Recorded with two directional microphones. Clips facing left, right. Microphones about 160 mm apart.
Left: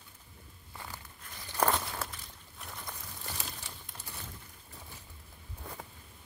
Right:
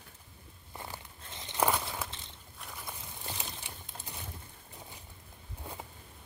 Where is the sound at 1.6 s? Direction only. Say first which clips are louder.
Even; 5° right (ahead or behind).